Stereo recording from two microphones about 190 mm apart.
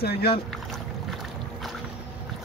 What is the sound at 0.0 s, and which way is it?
Speech, 55° left (ahead or behind).